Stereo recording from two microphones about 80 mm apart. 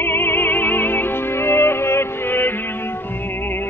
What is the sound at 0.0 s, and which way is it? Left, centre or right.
Music, left.